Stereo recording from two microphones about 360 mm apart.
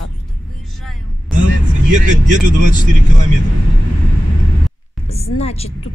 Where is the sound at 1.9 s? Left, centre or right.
Right.